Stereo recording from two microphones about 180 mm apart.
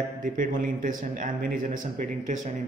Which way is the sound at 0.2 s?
50° right (ahead or behind).